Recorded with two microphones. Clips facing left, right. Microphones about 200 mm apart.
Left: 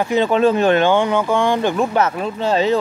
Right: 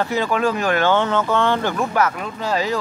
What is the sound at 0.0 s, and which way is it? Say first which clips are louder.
Speech: left 5 dB; 20° left (ahead or behind).